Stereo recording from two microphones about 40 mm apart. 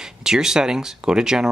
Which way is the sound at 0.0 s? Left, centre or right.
Centre.